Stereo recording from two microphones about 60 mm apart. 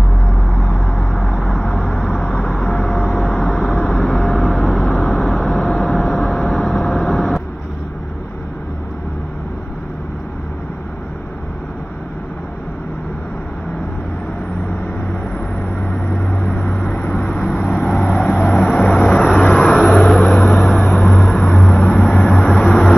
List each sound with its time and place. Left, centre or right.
0.3 s vehicle: centre
15.9 s vehicle: centre
22.0 s vehicle: centre